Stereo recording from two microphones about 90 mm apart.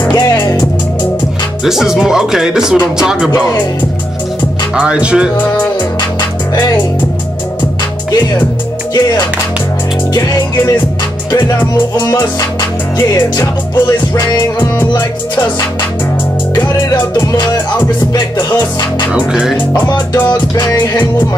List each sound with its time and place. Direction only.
0.4 s music: 50° left (ahead or behind)
1.6 s speech: 5° right (ahead or behind)
4.7 s speech: 10° right (ahead or behind)
10.1 s music: 45° left (ahead or behind)
12.1 s music: 40° left (ahead or behind)
18.6 s music: 50° left (ahead or behind)
19.1 s speech: 10° right (ahead or behind)
19.9 s music: 50° left (ahead or behind)